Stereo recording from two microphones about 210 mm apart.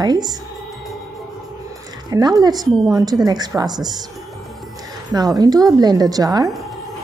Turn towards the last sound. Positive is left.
turn(degrees=-15)  # may be behind; listen again after turning